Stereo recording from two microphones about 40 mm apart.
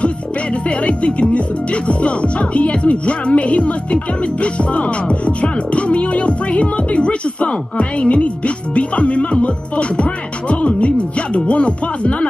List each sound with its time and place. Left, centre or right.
0.7 s speech: left